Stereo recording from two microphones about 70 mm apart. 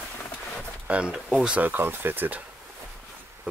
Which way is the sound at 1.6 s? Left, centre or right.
Right.